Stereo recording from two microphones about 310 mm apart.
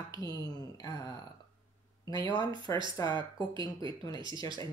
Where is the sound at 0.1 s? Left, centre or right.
Centre.